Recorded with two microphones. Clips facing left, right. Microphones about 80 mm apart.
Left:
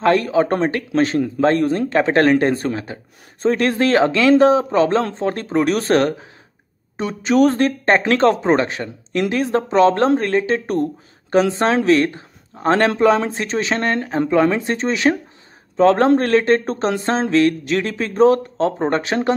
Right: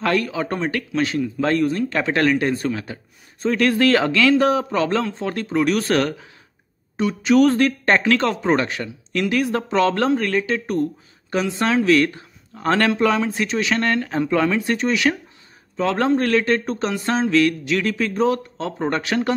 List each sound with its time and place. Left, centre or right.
0.0 s a man's voice: left
18.8 s a man's voice: left